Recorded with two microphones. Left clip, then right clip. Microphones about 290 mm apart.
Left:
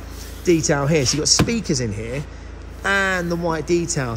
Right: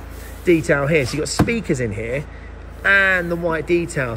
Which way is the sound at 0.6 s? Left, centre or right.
Centre.